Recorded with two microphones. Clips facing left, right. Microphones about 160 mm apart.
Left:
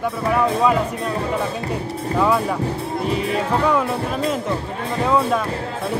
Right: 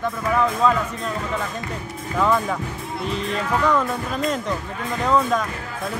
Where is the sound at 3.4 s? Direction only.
30° left (ahead or behind).